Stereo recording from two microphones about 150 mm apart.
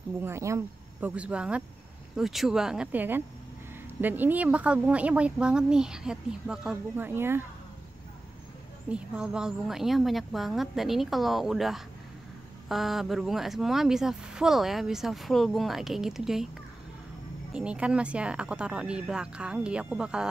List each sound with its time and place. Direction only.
0.2 s speech: 20° right (ahead or behind)
1.1 s speech: 10° right (ahead or behind)
8.8 s speech: 5° right (ahead or behind)
17.6 s speech: 5° right (ahead or behind)